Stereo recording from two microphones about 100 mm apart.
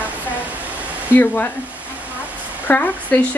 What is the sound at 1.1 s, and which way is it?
Speech, 20° left (ahead or behind).